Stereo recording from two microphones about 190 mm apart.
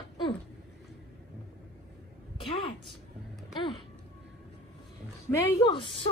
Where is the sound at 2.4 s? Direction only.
25° left (ahead or behind).